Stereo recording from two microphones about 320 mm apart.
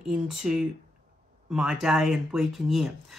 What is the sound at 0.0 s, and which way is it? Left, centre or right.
Speech, centre.